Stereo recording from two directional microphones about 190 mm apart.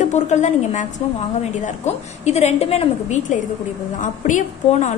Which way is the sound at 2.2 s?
35° left (ahead or behind).